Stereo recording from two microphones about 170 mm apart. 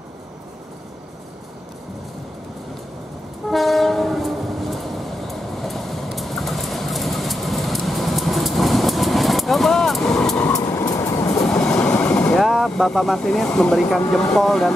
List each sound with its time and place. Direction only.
3.4 s train: centre (ahead or behind)
10.5 s vehicle: 20° left (ahead or behind)
11.4 s train: 5° left (ahead or behind)
11.9 s vehicle: 10° left (ahead or behind)
12.4 s speech: centre (ahead or behind)